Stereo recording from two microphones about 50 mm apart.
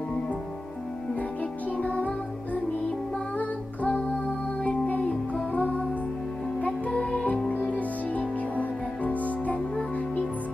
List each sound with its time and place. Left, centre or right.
1.8 s music: left